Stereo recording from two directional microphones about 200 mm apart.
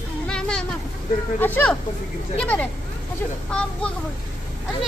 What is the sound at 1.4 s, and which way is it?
A child's voice, 10° left (ahead or behind).